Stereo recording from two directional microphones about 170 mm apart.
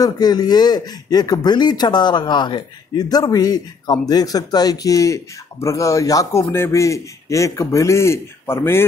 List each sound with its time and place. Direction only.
0.0 s speech: 25° left (ahead or behind)